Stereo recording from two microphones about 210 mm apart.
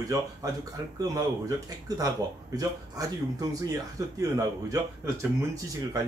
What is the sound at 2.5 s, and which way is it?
Speech, 15° right (ahead or behind).